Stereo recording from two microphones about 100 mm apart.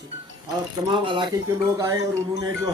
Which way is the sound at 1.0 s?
55° right (ahead or behind).